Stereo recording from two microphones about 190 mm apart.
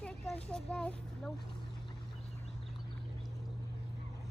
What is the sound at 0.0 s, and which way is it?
Speech, 5° left (ahead or behind).